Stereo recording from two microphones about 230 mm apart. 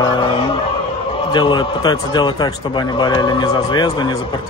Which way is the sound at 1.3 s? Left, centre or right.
Centre.